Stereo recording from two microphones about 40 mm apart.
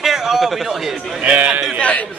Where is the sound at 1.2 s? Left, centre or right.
Right.